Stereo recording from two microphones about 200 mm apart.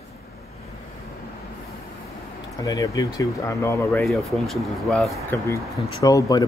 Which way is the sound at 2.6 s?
15° left (ahead or behind).